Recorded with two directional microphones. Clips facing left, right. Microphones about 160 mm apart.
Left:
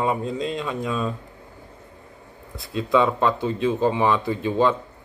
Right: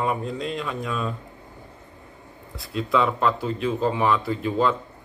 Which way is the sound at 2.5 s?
20° left (ahead or behind).